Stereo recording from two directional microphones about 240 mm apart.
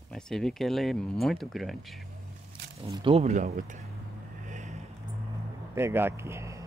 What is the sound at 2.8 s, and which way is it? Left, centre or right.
Speech, right.